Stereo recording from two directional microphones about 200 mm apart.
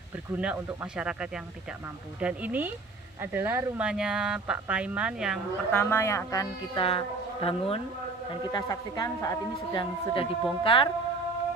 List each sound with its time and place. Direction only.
0.4 s speech: 5° right (ahead or behind)
5.7 s speech: 10° left (ahead or behind); by 10.9 s 25° left (ahead or behind)